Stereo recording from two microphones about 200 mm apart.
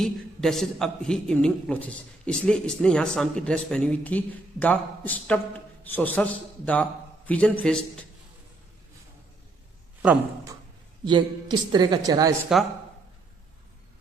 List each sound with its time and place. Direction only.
0.0 s a man's voice: centre (ahead or behind)
11.1 s a woman's voice: 20° right (ahead or behind)